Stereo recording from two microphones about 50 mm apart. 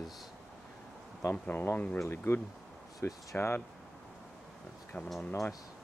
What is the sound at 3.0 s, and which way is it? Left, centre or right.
Speech, left.